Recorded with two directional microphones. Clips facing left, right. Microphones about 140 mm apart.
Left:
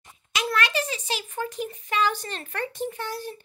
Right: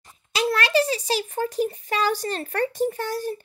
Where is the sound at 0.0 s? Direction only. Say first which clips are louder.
Right 5 dB; 30° right (ahead or behind).